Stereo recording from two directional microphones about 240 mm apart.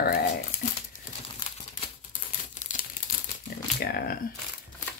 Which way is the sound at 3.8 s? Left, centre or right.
Left.